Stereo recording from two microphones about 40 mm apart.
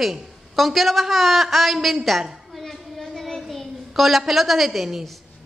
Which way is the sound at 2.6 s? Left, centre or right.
Centre.